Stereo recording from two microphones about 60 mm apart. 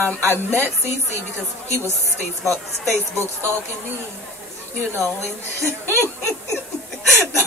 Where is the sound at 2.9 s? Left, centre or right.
Right.